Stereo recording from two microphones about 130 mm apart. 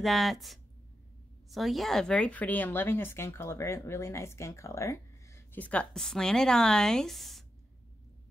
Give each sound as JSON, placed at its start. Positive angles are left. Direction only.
{"t": 0.0, "sound": "speech", "side_deg": 0}
{"t": 5.6, "sound": "speech", "side_deg": 10}